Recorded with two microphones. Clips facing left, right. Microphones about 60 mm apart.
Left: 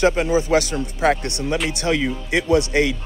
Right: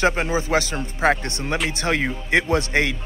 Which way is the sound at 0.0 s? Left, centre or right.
Right.